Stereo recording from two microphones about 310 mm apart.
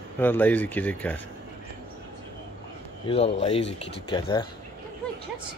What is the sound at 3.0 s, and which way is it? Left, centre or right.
Speech, centre.